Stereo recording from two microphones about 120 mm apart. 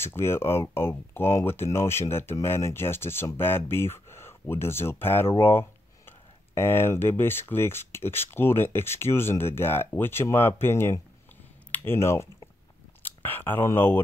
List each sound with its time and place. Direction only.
0.0 s speech: 20° left (ahead or behind)